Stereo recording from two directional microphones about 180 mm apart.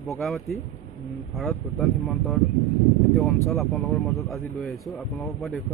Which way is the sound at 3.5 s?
15° left (ahead or behind).